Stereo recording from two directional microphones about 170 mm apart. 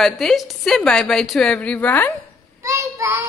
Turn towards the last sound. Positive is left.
turn(degrees=-15)  # may be behind; listen again after turning